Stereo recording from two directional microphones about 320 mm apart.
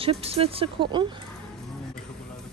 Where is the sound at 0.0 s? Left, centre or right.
Centre.